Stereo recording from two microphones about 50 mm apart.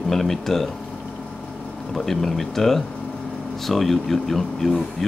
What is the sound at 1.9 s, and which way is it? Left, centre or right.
Speech, centre.